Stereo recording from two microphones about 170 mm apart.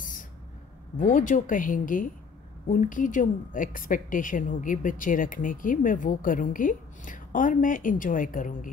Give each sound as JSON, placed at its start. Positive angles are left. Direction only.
{"t": 0.9, "sound": "a woman's voice", "side_deg": 50}